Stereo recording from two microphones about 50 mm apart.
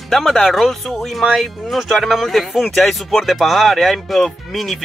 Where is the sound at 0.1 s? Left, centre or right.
Centre.